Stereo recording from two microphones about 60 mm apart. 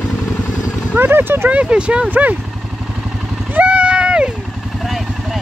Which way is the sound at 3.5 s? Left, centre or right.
Right.